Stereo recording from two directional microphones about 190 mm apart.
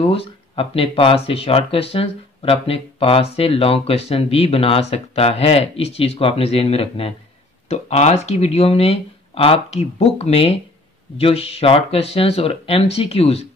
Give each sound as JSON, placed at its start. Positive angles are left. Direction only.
{"t": 0.0, "sound": "speech", "side_deg": 30}